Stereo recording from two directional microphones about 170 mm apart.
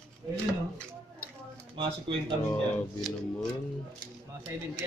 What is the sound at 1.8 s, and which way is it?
Speech, 30° right (ahead or behind).